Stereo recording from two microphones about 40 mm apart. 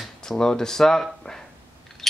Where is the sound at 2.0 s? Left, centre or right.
Centre.